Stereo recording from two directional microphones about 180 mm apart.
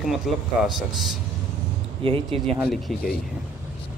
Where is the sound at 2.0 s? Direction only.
30° right (ahead or behind).